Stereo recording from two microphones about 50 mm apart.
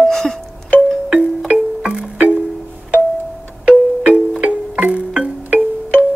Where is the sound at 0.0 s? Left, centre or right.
Centre.